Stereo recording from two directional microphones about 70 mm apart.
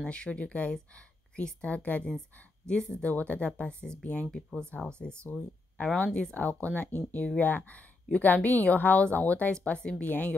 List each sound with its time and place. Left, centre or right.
0.0 s speech: centre